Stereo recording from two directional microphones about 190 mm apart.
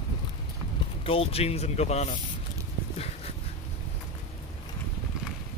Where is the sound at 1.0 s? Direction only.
30° left (ahead or behind).